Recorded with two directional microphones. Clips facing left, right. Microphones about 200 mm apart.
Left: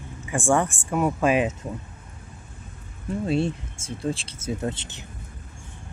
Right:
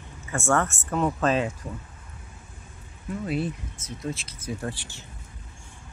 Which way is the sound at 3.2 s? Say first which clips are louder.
Left 5 dB; 30° left (ahead or behind).